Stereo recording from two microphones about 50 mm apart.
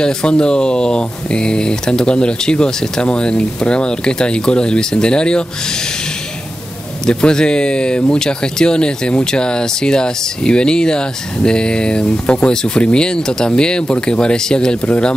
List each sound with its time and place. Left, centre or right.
0.0 s speech: centre
7.1 s speech: centre